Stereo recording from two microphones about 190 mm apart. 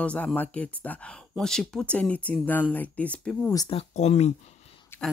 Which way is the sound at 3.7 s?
35° left (ahead or behind).